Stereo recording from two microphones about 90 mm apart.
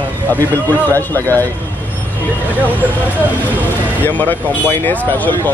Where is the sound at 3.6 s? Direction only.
20° left (ahead or behind).